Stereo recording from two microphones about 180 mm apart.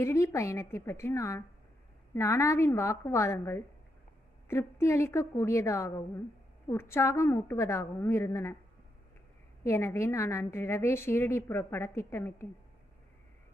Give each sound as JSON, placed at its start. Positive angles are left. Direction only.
{"t": 0.0, "sound": "a woman's voice", "side_deg": 15}
{"t": 9.6, "sound": "a woman's voice", "side_deg": 15}